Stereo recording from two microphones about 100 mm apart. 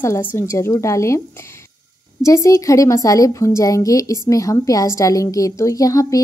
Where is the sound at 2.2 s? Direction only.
30° left (ahead or behind).